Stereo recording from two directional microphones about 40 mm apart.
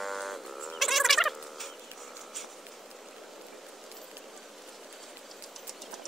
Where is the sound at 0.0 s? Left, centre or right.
Centre.